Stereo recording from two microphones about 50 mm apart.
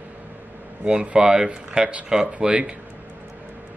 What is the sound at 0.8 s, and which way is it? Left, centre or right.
Speech, centre.